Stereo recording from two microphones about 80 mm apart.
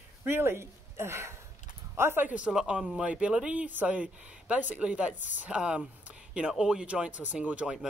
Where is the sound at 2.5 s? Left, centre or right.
Centre.